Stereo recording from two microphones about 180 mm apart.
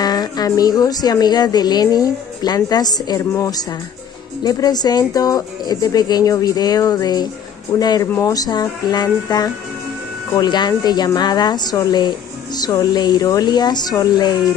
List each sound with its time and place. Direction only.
0.0 s speech: 20° left (ahead or behind)